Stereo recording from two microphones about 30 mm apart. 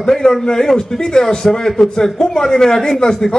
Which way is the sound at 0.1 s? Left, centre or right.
Centre.